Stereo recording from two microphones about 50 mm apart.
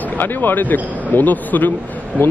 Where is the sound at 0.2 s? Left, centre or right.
Left.